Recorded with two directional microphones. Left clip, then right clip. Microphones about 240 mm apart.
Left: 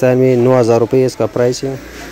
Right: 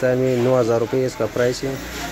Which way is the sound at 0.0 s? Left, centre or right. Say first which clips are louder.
Left 7 dB; left.